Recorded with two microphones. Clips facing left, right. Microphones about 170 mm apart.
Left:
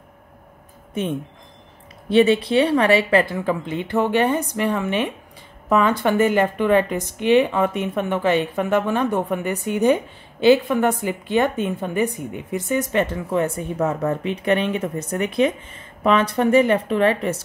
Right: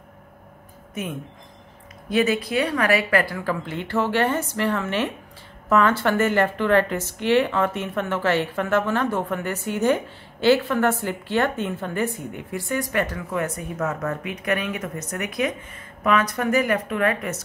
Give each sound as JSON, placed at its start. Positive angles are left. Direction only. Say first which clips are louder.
{"t": 2.0, "sound": "a woman's voice", "louder": "left 6 dB", "side_deg": 30}